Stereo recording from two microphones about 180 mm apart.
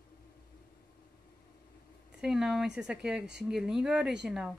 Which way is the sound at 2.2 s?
5° right (ahead or behind).